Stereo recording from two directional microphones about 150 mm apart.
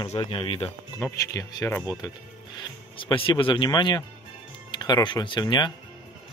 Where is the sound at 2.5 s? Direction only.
35° left (ahead or behind).